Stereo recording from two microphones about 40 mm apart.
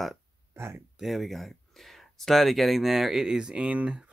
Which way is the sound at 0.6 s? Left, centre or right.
Right.